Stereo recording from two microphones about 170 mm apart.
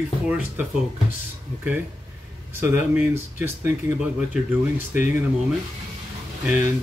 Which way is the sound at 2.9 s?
10° right (ahead or behind).